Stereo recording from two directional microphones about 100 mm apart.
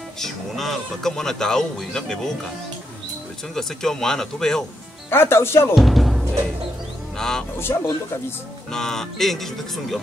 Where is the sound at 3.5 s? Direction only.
5° left (ahead or behind).